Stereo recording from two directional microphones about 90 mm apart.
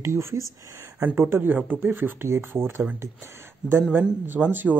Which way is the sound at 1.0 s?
25° right (ahead or behind).